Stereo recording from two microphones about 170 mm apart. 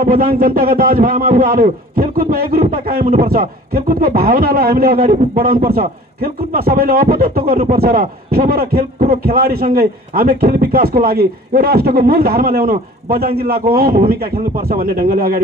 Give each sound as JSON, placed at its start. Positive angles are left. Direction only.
{"t": 0.0, "sound": "speech", "side_deg": -60}